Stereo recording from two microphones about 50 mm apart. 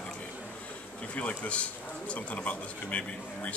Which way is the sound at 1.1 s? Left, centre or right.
Left.